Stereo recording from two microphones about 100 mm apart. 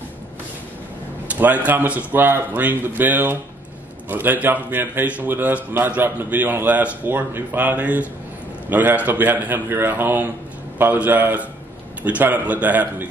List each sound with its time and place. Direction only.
1.3 s a man's voice: 15° right (ahead or behind)